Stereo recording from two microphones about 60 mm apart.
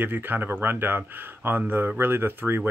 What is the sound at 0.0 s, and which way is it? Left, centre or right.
Speech, right.